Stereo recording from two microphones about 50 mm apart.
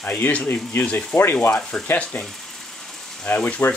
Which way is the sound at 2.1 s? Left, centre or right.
Left.